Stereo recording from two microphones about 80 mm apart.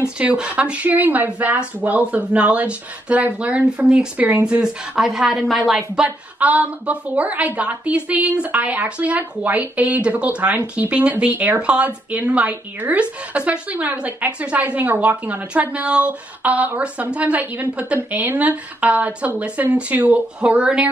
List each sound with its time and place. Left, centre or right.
0.2 s a woman's voice: centre
6.0 s a woman's voice: centre